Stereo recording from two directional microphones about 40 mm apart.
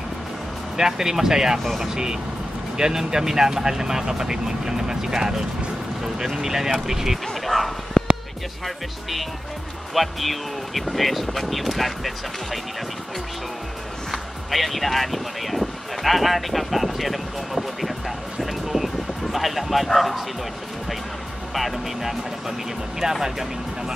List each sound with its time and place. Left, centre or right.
0.7 s speech: centre
1.6 s speech: centre
2.8 s speech: centre
6.3 s speech: centre
7.4 s speech: centre
8.0 s music: centre
9.9 s speech: centre
14.1 s speech: centre
21.5 s speech: centre
23.0 s speech: centre